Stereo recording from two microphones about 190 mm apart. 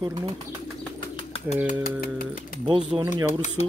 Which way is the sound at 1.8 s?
50° left (ahead or behind).